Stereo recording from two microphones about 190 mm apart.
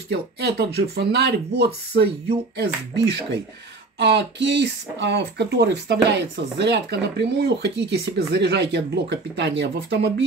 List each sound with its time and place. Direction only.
0.1 s speech: 55° right (ahead or behind)
4.0 s speech: 65° right (ahead or behind)